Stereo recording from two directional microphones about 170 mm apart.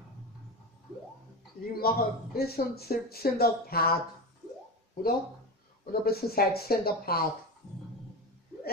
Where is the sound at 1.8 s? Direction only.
65° left (ahead or behind).